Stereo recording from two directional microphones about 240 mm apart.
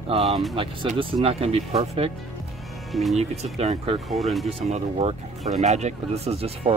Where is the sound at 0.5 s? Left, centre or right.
Right.